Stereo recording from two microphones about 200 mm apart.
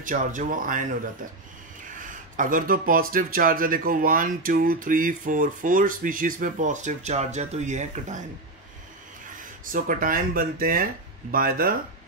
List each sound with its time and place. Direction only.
0.0 s speech: 40° right (ahead or behind)
2.0 s speech: 40° right (ahead or behind)
9.3 s speech: 40° right (ahead or behind)